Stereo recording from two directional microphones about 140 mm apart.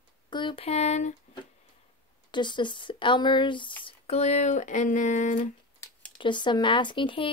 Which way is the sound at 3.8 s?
50° left (ahead or behind).